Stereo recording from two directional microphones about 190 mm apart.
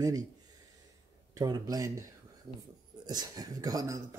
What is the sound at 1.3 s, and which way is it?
Speech, 20° right (ahead or behind).